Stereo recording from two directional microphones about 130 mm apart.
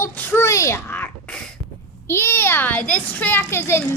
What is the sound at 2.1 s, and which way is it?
A child's voice, 20° left (ahead or behind).